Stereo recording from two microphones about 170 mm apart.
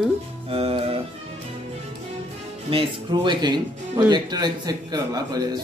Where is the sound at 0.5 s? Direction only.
35° right (ahead or behind).